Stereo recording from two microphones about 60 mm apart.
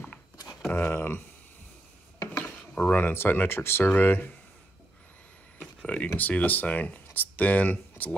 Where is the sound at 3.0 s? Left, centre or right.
Left.